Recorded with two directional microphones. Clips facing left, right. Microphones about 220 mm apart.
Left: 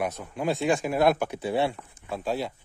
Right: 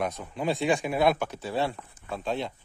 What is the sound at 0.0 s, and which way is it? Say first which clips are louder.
Speech: left 1 dB; 5° left (ahead or behind).